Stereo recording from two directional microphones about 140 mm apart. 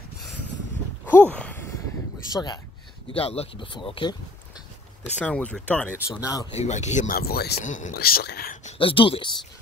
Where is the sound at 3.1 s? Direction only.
45° left (ahead or behind).